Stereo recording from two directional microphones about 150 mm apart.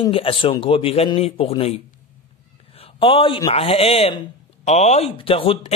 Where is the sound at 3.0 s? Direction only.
35° left (ahead or behind).